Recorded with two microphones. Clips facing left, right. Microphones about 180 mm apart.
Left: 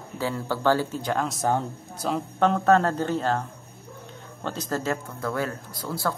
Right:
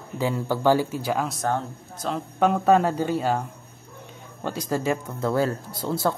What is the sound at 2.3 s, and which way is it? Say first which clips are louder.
Speech: right 1 dB; 10° right (ahead or behind).